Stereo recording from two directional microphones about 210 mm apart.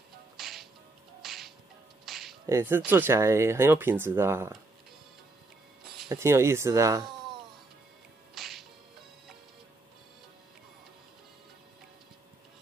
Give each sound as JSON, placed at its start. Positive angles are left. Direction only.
{"t": 0.4, "sound": "music", "side_deg": 0}
{"t": 2.0, "sound": "a sound", "side_deg": 0}
{"t": 2.4, "sound": "speech", "side_deg": -10}
{"t": 6.0, "sound": "speech", "side_deg": -15}
{"t": 8.4, "sound": "music", "side_deg": 0}